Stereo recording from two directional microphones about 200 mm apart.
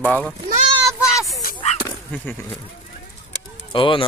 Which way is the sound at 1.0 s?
15° left (ahead or behind).